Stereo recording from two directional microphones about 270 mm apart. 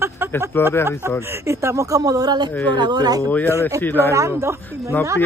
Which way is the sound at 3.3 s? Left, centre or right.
Centre.